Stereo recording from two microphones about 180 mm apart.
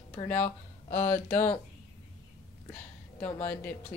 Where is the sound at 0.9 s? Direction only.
10° left (ahead or behind).